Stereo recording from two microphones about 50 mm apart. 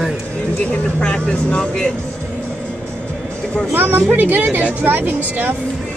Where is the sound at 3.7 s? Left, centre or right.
Right.